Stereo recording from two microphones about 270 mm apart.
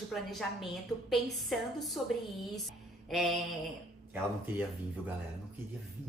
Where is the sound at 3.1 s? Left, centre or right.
Centre.